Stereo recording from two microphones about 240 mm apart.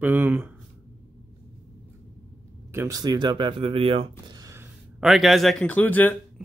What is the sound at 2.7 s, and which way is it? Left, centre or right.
Speech, centre.